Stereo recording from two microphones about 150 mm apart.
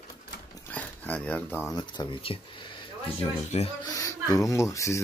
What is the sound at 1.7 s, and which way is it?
Speech, 30° left (ahead or behind).